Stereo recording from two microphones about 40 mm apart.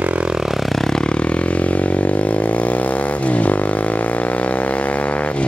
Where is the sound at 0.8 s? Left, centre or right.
Centre.